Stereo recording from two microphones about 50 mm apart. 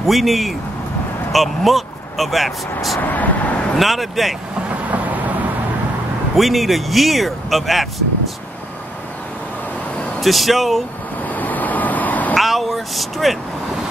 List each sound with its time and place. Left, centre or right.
0.0 s speech: centre
3.0 s vehicle: left
3.7 s speech: centre
6.3 s speech: centre
10.2 s speech: centre
11.2 s vehicle: left
12.4 s vehicle: centre